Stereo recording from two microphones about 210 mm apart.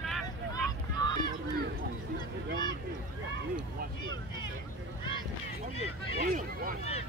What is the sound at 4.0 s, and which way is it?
Vehicle, 20° left (ahead or behind).